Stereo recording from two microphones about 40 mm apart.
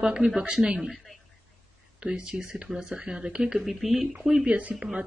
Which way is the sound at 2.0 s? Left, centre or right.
Right.